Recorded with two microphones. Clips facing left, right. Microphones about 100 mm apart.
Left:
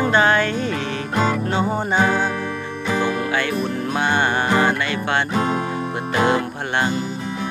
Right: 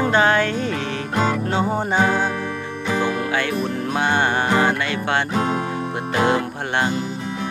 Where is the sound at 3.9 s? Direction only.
90° right.